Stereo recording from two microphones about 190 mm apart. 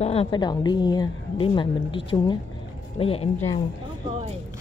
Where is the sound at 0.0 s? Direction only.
30° left (ahead or behind).